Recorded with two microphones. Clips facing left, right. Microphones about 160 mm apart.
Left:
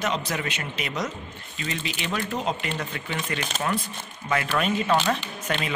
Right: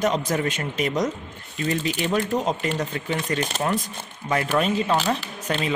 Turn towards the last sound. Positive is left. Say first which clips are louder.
# right 3 dB
turn(degrees=-35)  # may be behind; listen again after turning